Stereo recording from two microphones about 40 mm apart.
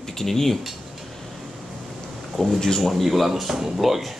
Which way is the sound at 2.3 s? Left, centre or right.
Centre.